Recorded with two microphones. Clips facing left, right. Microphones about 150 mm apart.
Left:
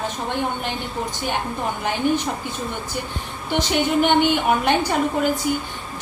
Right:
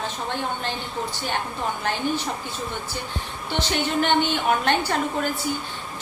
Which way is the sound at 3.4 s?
15° left (ahead or behind).